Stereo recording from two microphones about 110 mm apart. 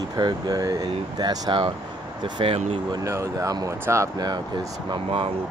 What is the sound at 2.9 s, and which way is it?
Speech, 30° right (ahead or behind).